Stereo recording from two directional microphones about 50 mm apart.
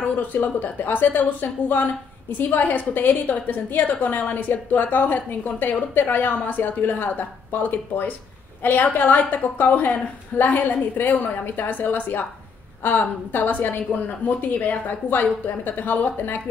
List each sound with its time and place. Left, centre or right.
0.3 s a woman's voice: left